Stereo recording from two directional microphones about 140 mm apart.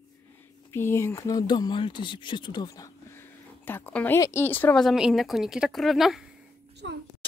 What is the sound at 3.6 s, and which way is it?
Speech, 15° left (ahead or behind).